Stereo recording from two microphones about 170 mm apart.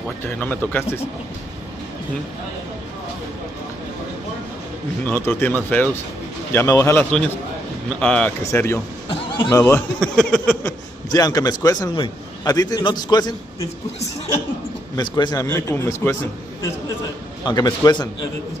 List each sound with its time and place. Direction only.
0.4 s speech: 10° left (ahead or behind)
5.0 s speech: 10° left (ahead or behind)
9.9 s speech: 5° left (ahead or behind)
11.1 s a man's voice: 20° left (ahead or behind)
15.0 s a man's voice: 25° left (ahead or behind)
15.4 s speech: 10° left (ahead or behind)
17.5 s a man's voice: 25° left (ahead or behind)